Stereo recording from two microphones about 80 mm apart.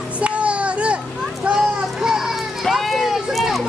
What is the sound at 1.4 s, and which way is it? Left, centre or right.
Children playing, centre.